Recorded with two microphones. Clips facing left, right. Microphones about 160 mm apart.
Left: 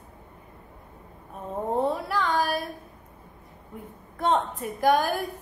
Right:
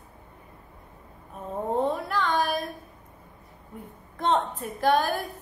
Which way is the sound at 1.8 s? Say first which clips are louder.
Even; 10° left (ahead or behind).